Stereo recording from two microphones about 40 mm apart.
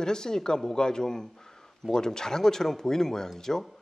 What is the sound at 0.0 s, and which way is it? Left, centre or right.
Speech, centre.